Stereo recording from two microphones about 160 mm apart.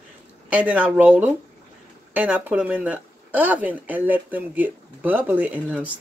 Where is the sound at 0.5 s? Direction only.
10° right (ahead or behind).